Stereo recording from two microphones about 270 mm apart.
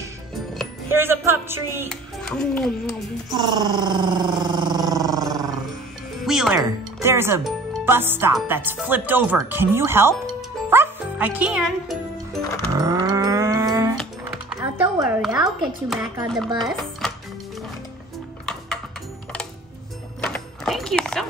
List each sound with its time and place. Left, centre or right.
0.6 s music: centre
1.9 s speech: centre
3.3 s a sound: centre
6.2 s music: centre
7.7 s speech: centre
10.7 s music: centre
12.7 s a sound: centre
14.5 s music: centre
16.6 s sewing machine: centre
20.2 s music: centre